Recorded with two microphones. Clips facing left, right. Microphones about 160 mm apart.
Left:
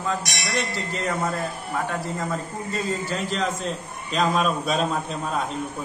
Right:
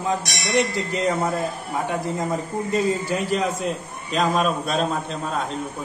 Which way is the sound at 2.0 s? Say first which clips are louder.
Right 3 dB; 15° right (ahead or behind).